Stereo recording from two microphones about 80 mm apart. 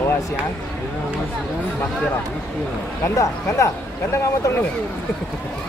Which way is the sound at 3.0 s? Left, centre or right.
Left.